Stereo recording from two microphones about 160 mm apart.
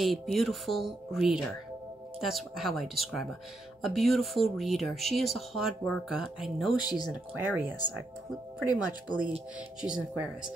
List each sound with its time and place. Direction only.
0.0 s speech: centre (ahead or behind)
6.8 s speech: 25° left (ahead or behind)
7.3 s speech: 10° right (ahead or behind)